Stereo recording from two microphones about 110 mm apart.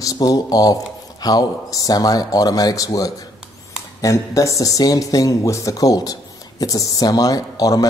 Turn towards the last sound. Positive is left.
turn(degrees=35)  # may be behind; listen again after turning